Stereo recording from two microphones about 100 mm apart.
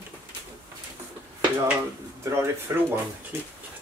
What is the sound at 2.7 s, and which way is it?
Speech, 25° right (ahead or behind).